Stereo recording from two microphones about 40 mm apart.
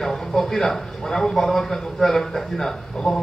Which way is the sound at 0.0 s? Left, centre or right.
Centre.